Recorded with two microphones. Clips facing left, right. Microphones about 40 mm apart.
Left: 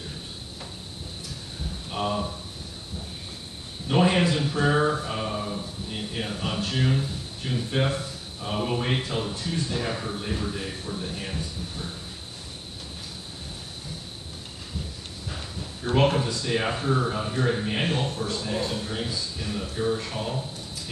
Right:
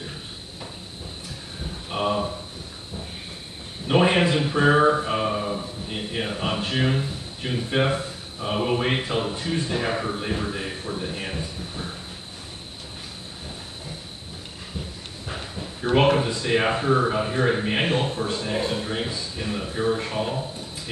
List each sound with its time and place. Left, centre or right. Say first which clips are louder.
1.9 s speech: right 4 dB; right
3.8 s speech: right 3 dB; right
15.2 s speech: right 4 dB; right